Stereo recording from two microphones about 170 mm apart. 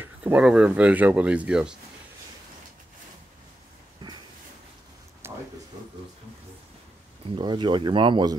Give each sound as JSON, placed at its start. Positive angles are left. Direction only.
{"t": 0.0, "sound": "speech", "side_deg": -10}
{"t": 5.2, "sound": "a sound", "side_deg": -15}
{"t": 7.2, "sound": "speech", "side_deg": -30}